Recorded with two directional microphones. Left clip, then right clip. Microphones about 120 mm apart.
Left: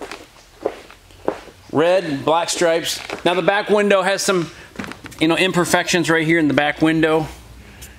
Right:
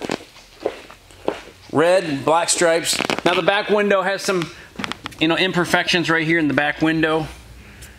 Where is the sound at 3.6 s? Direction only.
20° left (ahead or behind).